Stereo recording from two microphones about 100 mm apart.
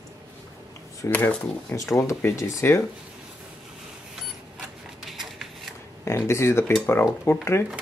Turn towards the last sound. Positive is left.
turn(degrees=25)  # may be behind; listen again after turning